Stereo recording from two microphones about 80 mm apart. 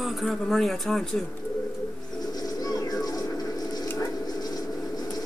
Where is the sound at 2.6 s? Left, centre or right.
Left.